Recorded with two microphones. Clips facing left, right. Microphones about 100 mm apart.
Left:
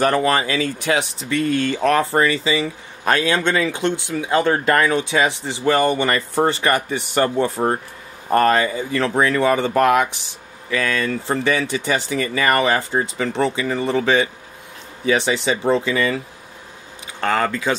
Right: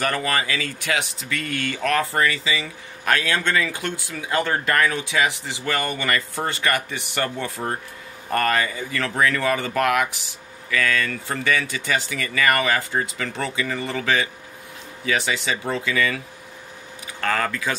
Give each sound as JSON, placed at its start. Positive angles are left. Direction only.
{"t": 0.0, "sound": "speech", "side_deg": 25}
{"t": 17.2, "sound": "speech", "side_deg": 25}